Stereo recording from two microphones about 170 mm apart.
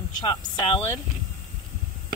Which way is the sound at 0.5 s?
30° left (ahead or behind).